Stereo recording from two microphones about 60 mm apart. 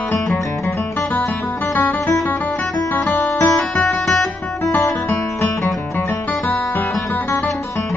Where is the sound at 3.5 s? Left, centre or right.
Centre.